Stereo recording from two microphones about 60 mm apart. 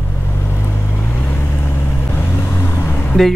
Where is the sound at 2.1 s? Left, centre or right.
Left.